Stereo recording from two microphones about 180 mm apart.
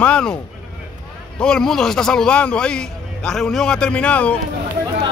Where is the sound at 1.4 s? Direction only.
5° left (ahead or behind).